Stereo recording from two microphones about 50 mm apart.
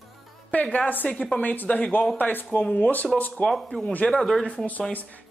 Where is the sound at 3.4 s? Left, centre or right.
Centre.